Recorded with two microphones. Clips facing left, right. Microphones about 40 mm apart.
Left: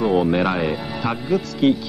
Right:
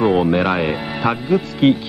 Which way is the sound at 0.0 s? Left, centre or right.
Right.